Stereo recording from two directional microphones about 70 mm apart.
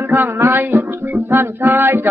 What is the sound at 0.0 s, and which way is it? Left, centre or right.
A man's voice, right.